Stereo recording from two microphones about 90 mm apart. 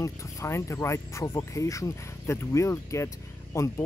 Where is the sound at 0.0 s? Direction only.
35° left (ahead or behind).